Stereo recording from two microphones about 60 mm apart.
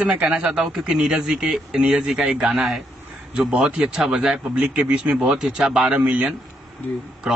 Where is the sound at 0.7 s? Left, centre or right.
Centre.